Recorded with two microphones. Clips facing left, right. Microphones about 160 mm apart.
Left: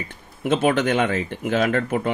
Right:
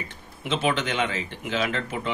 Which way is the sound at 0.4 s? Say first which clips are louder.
Left 6 dB; 50° left (ahead or behind).